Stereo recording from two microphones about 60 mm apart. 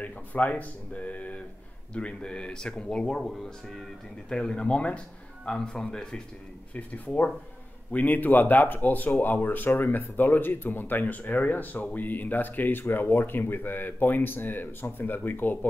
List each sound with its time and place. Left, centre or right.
0.0 s speech: left
6.7 s speech: left